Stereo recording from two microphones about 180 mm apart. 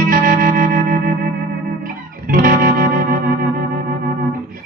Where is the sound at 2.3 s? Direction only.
55° right (ahead or behind).